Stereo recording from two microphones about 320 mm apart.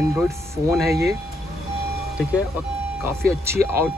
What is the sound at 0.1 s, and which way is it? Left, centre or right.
Speech, centre.